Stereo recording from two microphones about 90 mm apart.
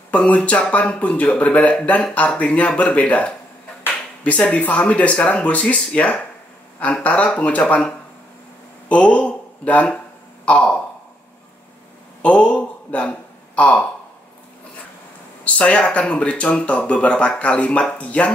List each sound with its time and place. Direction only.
0.1 s speech: 15° left (ahead or behind)
10.4 s a sound: 10° left (ahead or behind)
12.2 s speech: 15° left (ahead or behind)
13.6 s gasp: 15° left (ahead or behind)
15.4 s speech: 15° left (ahead or behind)